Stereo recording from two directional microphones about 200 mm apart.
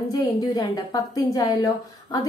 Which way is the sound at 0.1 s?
20° left (ahead or behind).